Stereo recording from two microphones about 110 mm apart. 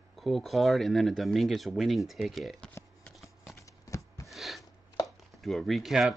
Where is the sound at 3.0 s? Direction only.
Centre (ahead or behind).